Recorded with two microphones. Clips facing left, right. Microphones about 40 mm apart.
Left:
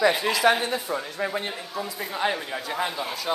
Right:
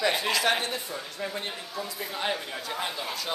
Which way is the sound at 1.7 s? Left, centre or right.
Centre.